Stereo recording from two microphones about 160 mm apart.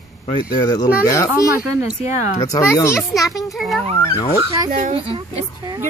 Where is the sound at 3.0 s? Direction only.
Centre (ahead or behind).